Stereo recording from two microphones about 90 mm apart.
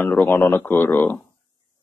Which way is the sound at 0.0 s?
20° left (ahead or behind).